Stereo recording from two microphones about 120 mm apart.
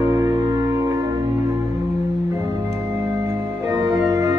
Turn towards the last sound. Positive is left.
turn(degrees=-25)  # may be behind; listen again after turning